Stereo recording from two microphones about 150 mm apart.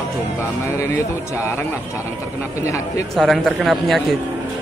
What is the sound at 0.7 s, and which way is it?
Speech, 20° left (ahead or behind).